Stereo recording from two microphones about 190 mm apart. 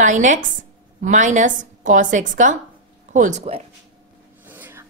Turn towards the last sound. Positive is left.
turn(degrees=-10)  # may be behind; listen again after turning